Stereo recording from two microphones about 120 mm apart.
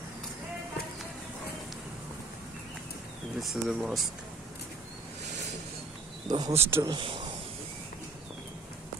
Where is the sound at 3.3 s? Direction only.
5° right (ahead or behind).